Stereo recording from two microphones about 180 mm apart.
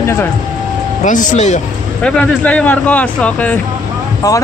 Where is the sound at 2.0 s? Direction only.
5° left (ahead or behind).